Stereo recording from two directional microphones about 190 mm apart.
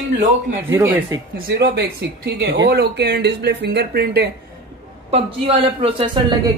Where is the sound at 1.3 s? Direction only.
60° right (ahead or behind).